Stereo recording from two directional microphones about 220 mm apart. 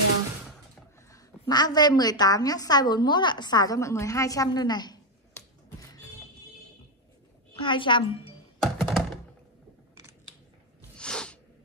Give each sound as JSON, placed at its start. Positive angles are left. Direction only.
{"t": 1.1, "sound": "a woman's voice", "side_deg": 15}
{"t": 7.5, "sound": "a woman's voice", "side_deg": 20}
{"t": 8.5, "sound": "thunk", "side_deg": 0}
{"t": 11.0, "sound": "sneeze", "side_deg": 5}